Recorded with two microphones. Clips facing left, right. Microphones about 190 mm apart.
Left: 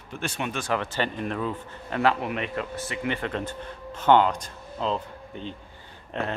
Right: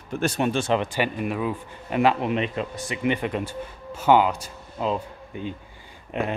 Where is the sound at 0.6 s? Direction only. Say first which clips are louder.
Right 4 dB; 20° right (ahead or behind).